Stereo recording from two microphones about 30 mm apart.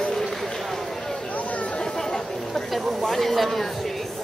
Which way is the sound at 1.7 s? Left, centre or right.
Left.